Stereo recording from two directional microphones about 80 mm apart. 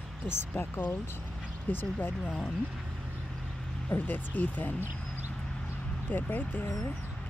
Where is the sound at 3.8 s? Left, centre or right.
Left.